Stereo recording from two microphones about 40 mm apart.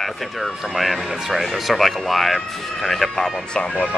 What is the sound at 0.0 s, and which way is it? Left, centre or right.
Speech, centre.